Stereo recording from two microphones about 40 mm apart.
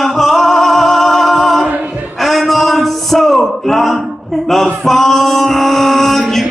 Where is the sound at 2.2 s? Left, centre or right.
Centre.